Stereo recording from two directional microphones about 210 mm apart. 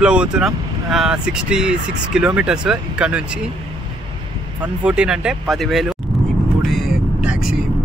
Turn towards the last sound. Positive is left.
turn(degrees=-5)  # may be behind; listen again after turning